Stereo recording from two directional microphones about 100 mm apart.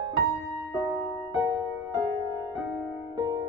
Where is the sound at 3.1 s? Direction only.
40° right (ahead or behind).